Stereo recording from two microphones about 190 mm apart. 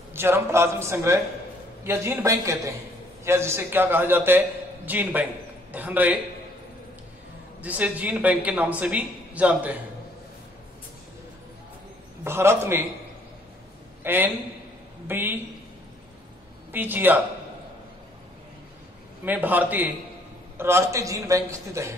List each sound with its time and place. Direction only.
0.1 s a man's voice: 10° right (ahead or behind)
7.6 s a man's voice: 10° right (ahead or behind)
12.3 s a man's voice: 15° right (ahead or behind)
14.0 s a man's voice: 10° right (ahead or behind)
16.7 s a man's voice: 10° right (ahead or behind)
19.2 s a man's voice: 10° right (ahead or behind)